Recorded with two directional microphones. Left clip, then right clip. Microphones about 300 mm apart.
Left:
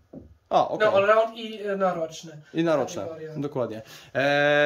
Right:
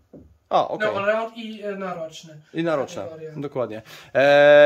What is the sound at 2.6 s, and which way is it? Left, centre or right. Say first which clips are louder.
Speech: even; centre.